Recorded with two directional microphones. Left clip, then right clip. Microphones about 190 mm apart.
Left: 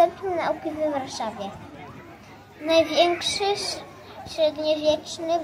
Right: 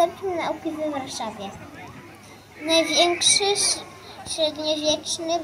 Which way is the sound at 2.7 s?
20° left (ahead or behind).